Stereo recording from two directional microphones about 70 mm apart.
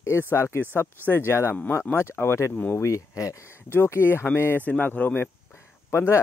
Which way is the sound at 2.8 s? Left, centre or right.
Left.